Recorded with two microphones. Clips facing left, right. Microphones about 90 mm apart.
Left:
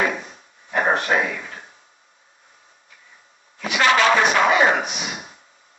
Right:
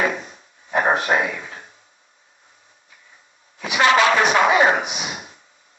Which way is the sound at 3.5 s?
15° right (ahead or behind).